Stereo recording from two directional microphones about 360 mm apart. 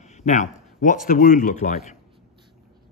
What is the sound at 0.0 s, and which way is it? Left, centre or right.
Speech, centre.